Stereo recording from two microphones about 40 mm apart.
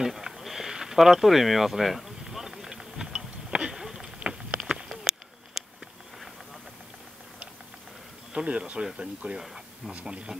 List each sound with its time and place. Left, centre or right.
0.0 s a sound: centre
8.3 s speech: right
9.4 s speech: centre